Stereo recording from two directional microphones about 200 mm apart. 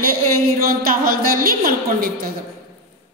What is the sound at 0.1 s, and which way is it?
A woman's voice, 45° right (ahead or behind).